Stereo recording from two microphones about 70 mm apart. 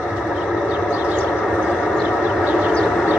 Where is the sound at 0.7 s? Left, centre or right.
Right.